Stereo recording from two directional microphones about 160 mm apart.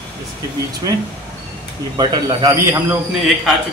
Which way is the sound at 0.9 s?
25° right (ahead or behind).